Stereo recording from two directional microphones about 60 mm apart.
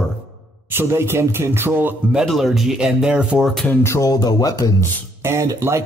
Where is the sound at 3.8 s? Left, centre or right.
Left.